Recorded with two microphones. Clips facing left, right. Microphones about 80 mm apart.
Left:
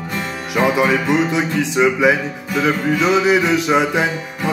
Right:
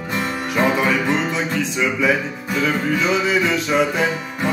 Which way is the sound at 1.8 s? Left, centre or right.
Left.